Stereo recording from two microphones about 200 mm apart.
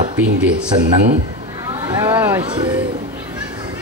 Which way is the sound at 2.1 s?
10° right (ahead or behind).